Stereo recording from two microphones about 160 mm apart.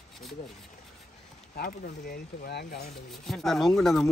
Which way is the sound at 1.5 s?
65° left (ahead or behind).